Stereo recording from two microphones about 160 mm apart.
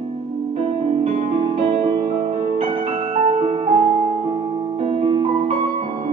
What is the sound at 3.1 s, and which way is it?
Music, 40° right (ahead or behind).